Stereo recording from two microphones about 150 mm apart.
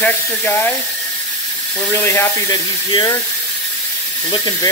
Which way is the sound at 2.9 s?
30° left (ahead or behind).